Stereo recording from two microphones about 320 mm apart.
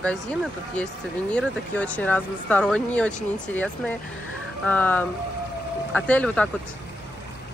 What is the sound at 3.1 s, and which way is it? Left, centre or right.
Speech, left.